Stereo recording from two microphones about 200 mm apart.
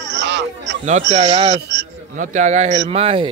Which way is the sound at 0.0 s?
60° right (ahead or behind).